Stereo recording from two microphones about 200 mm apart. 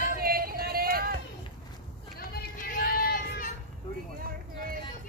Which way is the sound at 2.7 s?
45° left (ahead or behind).